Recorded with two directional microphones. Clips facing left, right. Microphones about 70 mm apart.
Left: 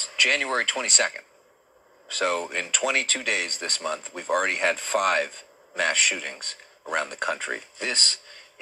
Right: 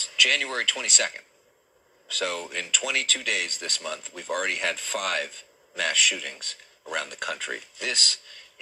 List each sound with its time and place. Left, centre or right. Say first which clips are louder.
0.0 s speech: left 1 dB; left